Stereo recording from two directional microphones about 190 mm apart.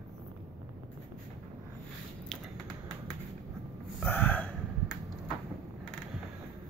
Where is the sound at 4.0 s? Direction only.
10° left (ahead or behind).